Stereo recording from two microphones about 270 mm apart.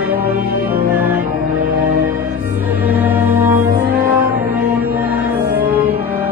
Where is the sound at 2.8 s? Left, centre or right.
Centre.